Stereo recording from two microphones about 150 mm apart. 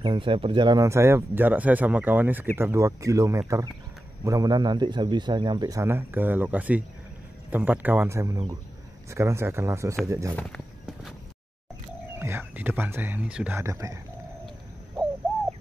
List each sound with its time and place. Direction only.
0.0 s speech: 30° right (ahead or behind)
12.2 s speech: 15° right (ahead or behind)
13.6 s speech: 20° right (ahead or behind)